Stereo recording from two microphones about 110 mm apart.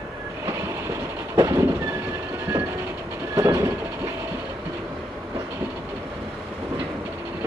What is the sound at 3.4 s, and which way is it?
Vehicle, 25° right (ahead or behind).